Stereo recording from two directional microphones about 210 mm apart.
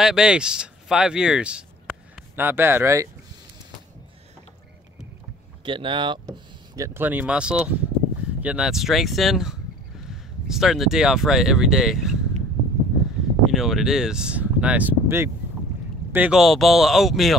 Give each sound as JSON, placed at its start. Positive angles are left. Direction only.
{"t": 0.0, "sound": "speech", "side_deg": -5}
{"t": 5.7, "sound": "speech", "side_deg": -25}
{"t": 13.5, "sound": "speech", "side_deg": 0}